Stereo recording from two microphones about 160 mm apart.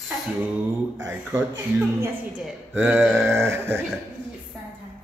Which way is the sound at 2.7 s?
10° right (ahead or behind).